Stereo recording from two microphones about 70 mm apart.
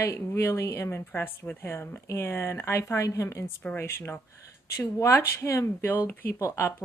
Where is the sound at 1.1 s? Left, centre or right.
Left.